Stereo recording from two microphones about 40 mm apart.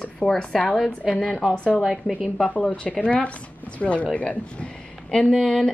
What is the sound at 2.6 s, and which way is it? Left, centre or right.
Speech, left.